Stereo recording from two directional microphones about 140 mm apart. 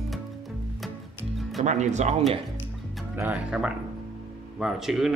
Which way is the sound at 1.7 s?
55° right (ahead or behind).